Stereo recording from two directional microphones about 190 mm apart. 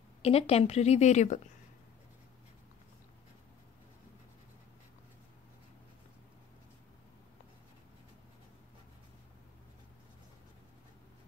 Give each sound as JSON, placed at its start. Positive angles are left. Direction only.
{"t": 0.2, "sound": "a woman's voice", "side_deg": 30}